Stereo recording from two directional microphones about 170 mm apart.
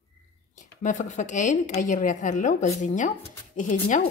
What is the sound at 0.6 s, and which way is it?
Speech, 45° left (ahead or behind).